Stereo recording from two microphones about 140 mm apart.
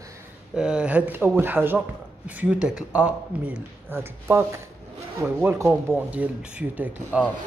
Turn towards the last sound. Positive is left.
turn(degrees=-10)  # may be behind; listen again after turning